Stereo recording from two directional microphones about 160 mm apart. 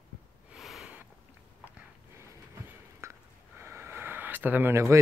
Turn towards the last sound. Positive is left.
turn(degrees=-15)  # may be behind; listen again after turning